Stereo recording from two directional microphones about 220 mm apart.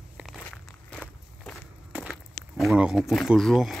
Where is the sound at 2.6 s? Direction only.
Centre (ahead or behind).